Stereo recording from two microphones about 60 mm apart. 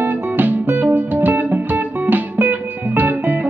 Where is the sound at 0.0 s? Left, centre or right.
Right.